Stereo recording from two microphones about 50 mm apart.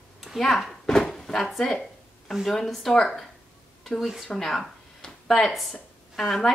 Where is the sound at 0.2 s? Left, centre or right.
Centre.